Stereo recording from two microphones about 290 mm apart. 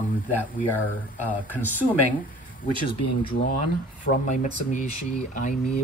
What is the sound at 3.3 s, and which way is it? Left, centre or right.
Speech, left.